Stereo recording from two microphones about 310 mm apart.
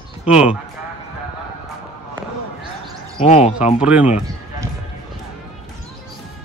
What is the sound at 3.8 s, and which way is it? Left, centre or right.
Speech, centre.